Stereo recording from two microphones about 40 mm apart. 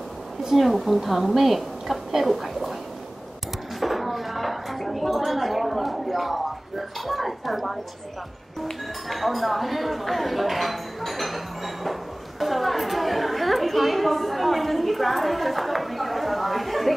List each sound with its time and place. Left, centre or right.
0.4 s a woman's voice: centre
3.8 s dishes: centre
7.1 s a woman's voice: centre
8.6 s a sound: centre